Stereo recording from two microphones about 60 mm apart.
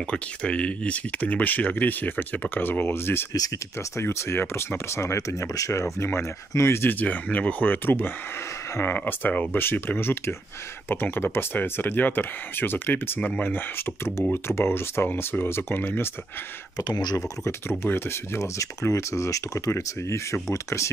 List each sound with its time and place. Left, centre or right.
0.0 s speech: centre; by 3.3 s left
3.3 s speech: left
3.9 s speech: left
5.9 s speech: left
6.9 s speech: left
9.6 s speech: left
17.5 s speech: left
18.4 s speech: left